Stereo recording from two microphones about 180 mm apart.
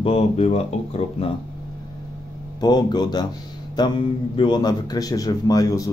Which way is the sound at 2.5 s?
20° left (ahead or behind).